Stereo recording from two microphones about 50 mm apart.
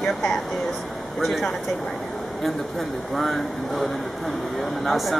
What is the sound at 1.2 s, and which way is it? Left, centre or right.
Speech, centre.